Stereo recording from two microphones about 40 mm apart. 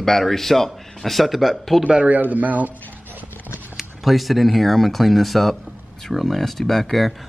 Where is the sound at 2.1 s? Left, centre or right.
Right.